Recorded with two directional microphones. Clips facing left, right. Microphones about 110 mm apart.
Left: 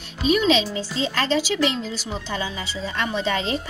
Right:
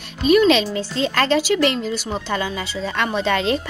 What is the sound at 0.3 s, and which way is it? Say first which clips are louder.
Speech: right 5 dB; 60° right (ahead or behind).